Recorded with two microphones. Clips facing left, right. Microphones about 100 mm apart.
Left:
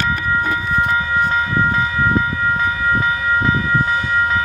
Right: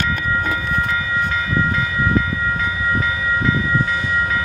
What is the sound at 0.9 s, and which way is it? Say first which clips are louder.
Train: left 4 dB; 30° left (ahead or behind).